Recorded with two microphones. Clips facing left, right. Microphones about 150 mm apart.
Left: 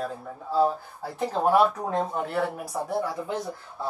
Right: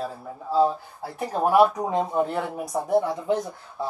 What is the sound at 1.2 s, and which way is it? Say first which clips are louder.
Speech: right 2 dB; 10° right (ahead or behind).